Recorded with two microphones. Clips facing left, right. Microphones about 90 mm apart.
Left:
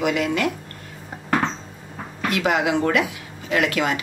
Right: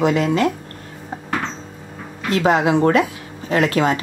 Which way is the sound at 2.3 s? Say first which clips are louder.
Right 5 dB; 35° right (ahead or behind).